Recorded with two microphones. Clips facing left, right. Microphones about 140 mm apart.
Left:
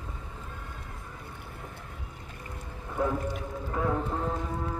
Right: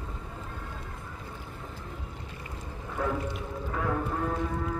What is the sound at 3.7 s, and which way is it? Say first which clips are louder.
Speech: left 1 dB; 20° left (ahead or behind).